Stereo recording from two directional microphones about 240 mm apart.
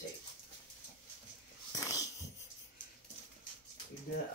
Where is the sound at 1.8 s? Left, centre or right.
Centre.